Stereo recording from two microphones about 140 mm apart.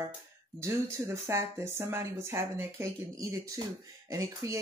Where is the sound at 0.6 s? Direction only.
20° right (ahead or behind).